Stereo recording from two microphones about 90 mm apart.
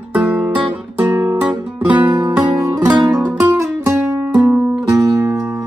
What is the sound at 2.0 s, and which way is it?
Music, 55° right (ahead or behind).